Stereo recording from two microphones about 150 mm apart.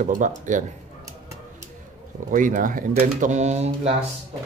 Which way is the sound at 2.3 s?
60° right (ahead or behind).